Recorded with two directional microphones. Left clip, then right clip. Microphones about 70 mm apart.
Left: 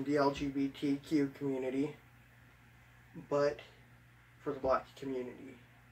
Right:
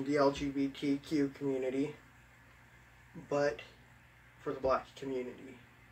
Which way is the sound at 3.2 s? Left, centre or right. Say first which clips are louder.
Even; centre.